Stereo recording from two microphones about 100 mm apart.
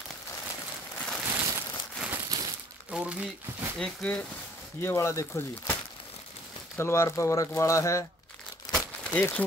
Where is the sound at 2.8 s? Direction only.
10° right (ahead or behind).